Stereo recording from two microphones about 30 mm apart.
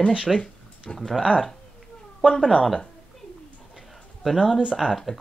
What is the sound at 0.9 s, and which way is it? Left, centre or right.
Speech, centre.